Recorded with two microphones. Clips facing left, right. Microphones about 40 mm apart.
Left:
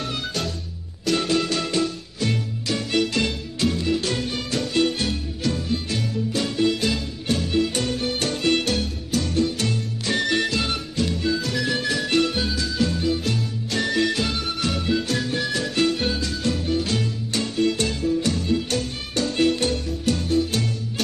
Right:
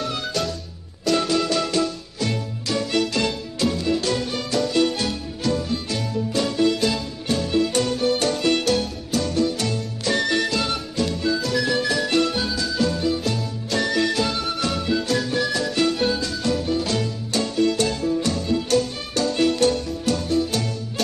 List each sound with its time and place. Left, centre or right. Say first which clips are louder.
0.0 s music: right 2 dB; centre
1.6 s music: right 1 dB; left
2.1 s music: left 1 dB; centre
8.7 s music: right 2 dB; centre
9.3 s music: even; left
12.6 s music: right 2 dB; centre
14.4 s music: right 1 dB; centre
16.6 s music: right 1 dB; left
16.9 s music: right 1 dB; centre
17.4 s music: right 2 dB; left
17.8 s music: even; centre
19.1 s music: right 1 dB; left
20.1 s music: even; centre